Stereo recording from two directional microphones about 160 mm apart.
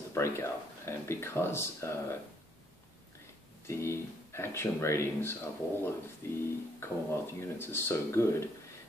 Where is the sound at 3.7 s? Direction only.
15° left (ahead or behind).